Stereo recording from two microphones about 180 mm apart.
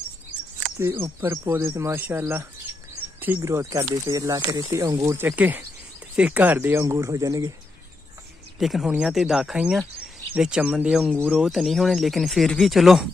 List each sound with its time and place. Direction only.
0.7 s speech: 15° right (ahead or behind)
8.5 s speech: centre (ahead or behind)